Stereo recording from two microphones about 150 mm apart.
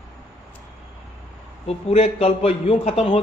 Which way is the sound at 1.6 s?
45° left (ahead or behind).